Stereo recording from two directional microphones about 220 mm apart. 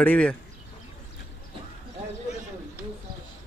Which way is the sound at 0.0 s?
5° left (ahead or behind).